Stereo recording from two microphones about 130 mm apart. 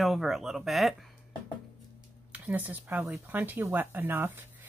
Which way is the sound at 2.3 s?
10° right (ahead or behind).